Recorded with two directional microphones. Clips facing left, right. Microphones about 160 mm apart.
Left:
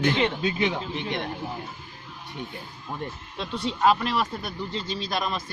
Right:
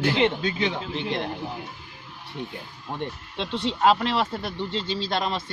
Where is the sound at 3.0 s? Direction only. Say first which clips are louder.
Right 4 dB; 25° right (ahead or behind).